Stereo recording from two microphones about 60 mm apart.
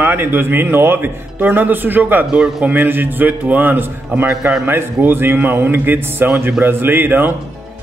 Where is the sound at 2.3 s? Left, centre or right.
Centre.